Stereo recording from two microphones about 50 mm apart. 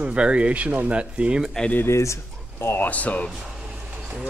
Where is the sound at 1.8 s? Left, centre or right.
Left.